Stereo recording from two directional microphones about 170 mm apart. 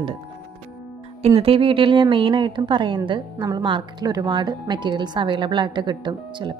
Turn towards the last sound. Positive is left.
turn(degrees=-25)  # may be behind; listen again after turning